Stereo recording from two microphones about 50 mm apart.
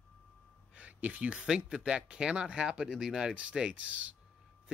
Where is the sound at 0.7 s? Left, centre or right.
Right.